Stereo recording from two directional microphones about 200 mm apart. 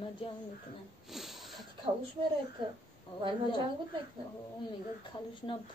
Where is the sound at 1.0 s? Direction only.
Centre (ahead or behind).